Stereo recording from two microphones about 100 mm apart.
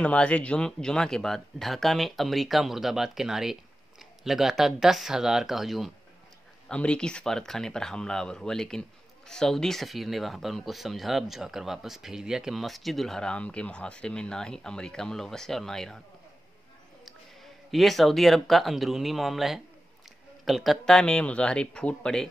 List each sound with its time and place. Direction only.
0.0 s speech: 15° left (ahead or behind)
6.7 s speech: 10° left (ahead or behind)
17.6 s speech: centre (ahead or behind)